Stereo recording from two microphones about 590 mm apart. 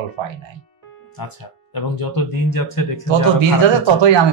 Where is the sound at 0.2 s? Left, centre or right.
Right.